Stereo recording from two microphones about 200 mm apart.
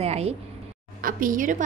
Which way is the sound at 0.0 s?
30° right (ahead or behind).